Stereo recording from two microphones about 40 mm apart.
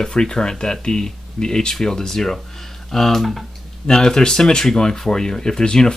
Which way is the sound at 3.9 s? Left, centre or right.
Centre.